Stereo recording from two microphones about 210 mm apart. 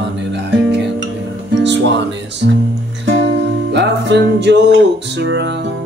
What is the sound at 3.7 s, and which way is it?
Music, 55° right (ahead or behind).